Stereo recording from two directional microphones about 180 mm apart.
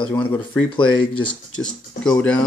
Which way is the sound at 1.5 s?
5° left (ahead or behind).